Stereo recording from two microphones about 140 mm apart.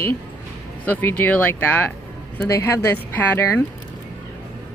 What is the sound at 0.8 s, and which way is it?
Speech, 10° left (ahead or behind).